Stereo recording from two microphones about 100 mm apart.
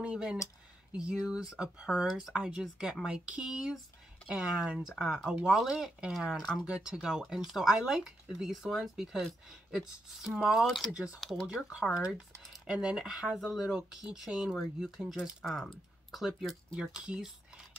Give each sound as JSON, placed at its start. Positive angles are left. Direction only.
{"t": 0.0, "sound": "speech", "side_deg": -10}
{"t": 6.6, "sound": "speech", "side_deg": -10}
{"t": 11.1, "sound": "speech", "side_deg": 0}
{"t": 11.4, "sound": "speech", "side_deg": -10}